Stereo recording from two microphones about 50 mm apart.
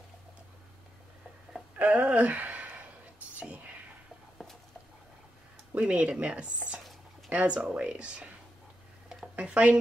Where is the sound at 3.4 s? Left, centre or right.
Right.